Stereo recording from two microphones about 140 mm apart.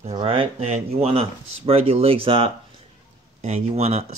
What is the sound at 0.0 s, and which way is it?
Speech, 45° right (ahead or behind).